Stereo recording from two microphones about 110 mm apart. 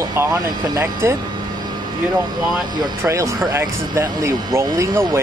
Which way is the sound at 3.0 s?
25° right (ahead or behind).